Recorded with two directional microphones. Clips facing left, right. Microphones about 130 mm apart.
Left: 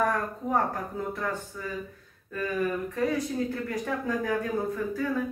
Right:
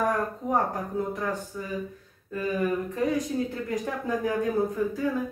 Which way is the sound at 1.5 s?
20° right (ahead or behind).